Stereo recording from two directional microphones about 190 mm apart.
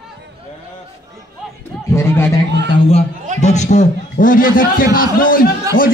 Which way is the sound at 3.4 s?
35° left (ahead or behind).